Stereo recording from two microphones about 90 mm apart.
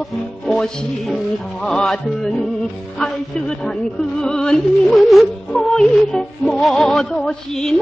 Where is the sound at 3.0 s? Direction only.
5° left (ahead or behind).